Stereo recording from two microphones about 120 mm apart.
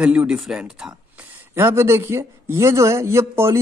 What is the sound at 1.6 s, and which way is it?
A man's voice, 20° right (ahead or behind).